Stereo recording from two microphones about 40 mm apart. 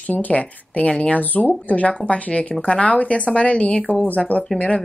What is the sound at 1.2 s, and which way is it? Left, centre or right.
Speech, left.